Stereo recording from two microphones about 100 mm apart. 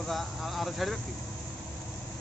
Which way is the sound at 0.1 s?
Centre (ahead or behind).